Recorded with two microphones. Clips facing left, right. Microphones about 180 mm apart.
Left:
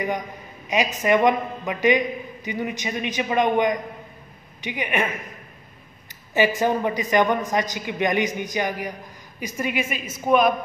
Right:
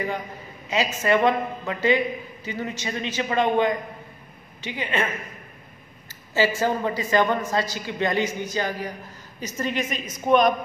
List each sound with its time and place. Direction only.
0.7 s a man's voice: 15° left (ahead or behind)
6.3 s a man's voice: 15° left (ahead or behind)